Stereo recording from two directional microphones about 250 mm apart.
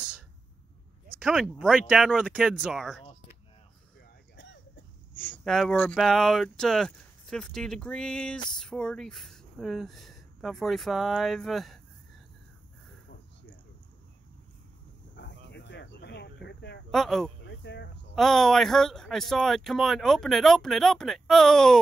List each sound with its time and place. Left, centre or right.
1.1 s speech: centre
5.1 s speech: centre
15.1 s a sound: left
16.9 s speech: centre
17.5 s a sound: left
18.1 s speech: centre